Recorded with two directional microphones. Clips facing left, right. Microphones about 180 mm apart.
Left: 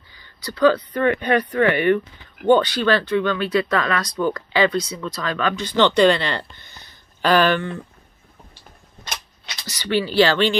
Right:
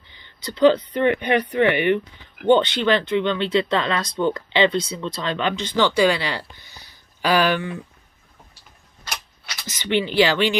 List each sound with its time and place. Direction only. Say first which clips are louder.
0.1 s speech: even; 20° right (ahead or behind)
5.8 s speech: left 3 dB; 10° right (ahead or behind)
9.7 s speech: even; 20° right (ahead or behind)